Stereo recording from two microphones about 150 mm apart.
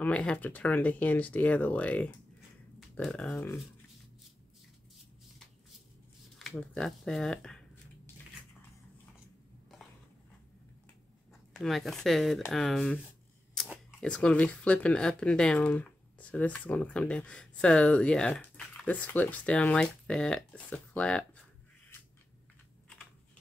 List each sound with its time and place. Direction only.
0.0 s speech: 5° left (ahead or behind)
3.3 s speech: 20° left (ahead or behind)
6.3 s speech: centre (ahead or behind)
11.5 s speech: centre (ahead or behind)